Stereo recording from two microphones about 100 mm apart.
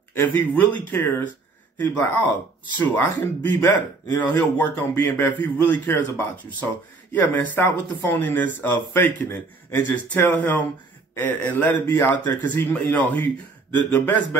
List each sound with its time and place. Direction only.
0.1 s a man's voice: 20° left (ahead or behind)